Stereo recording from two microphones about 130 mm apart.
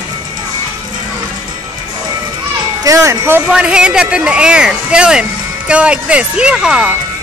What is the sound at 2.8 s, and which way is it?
Speech, 25° right (ahead or behind).